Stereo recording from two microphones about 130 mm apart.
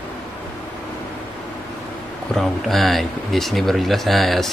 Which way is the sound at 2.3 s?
Centre (ahead or behind).